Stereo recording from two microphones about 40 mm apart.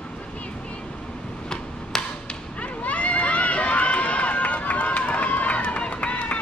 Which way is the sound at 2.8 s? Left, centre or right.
Left.